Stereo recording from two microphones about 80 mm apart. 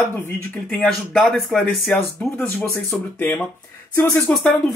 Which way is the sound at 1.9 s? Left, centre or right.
Left.